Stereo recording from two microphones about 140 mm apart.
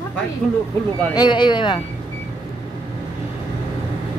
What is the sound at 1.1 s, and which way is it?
Speech, 30° left (ahead or behind).